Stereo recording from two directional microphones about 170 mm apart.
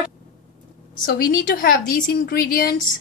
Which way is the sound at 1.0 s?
55° left (ahead or behind).